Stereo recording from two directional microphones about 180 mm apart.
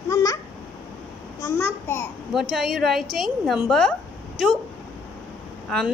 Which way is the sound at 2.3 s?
Centre (ahead or behind).